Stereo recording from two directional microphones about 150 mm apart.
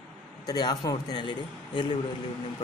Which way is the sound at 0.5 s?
25° left (ahead or behind).